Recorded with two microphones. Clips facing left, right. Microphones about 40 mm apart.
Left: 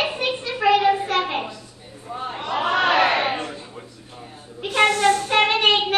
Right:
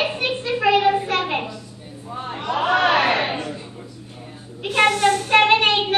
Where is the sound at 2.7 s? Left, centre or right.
Centre.